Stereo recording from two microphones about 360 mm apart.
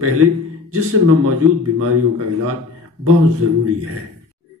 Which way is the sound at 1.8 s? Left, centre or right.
Right.